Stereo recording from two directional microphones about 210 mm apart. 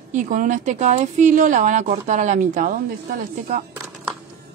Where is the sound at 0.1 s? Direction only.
40° right (ahead or behind).